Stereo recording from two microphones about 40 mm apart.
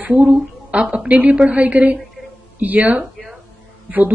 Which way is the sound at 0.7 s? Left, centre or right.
Right.